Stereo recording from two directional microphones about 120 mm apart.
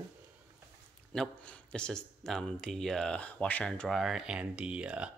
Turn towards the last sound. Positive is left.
turn(degrees=-10)  # may be behind; listen again after turning